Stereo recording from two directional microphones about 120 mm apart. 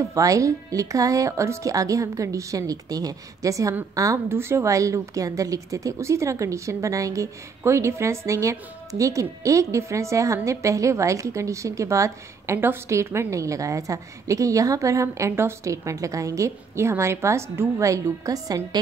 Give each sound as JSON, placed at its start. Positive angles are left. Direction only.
{"t": 0.1, "sound": "a woman's voice", "side_deg": -25}